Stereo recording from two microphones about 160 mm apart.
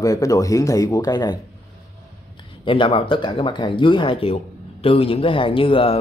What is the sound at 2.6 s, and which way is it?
Speech, 35° left (ahead or behind).